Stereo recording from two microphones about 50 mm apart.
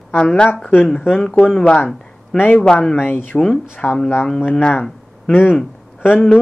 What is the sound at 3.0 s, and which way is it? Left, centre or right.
Speech, left.